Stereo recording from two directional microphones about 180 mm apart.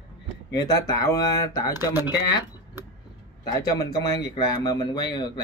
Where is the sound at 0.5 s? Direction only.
20° left (ahead or behind).